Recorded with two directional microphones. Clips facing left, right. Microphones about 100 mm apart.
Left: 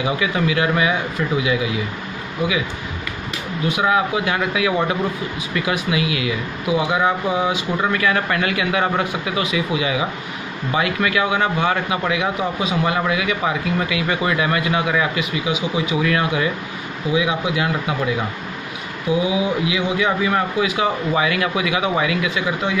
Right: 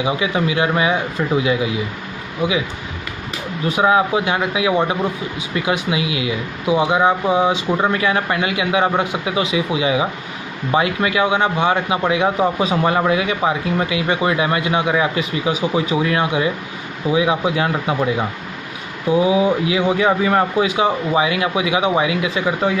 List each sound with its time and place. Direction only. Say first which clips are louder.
0.0 s speech: right 1 dB; 25° right (ahead or behind)
3.6 s speech: right 3 dB; 30° right (ahead or behind)
15.4 s speech: right 4 dB; 40° right (ahead or behind)